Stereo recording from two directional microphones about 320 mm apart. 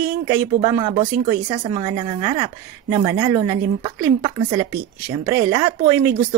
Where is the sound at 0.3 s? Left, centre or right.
Centre.